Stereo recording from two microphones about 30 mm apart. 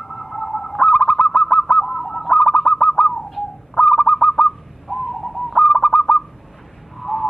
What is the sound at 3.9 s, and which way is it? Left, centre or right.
Goose, left.